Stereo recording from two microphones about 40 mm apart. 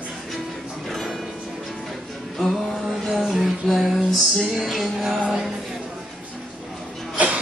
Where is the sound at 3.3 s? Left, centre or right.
Centre.